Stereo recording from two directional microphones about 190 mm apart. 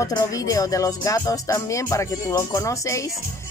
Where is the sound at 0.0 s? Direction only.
20° left (ahead or behind).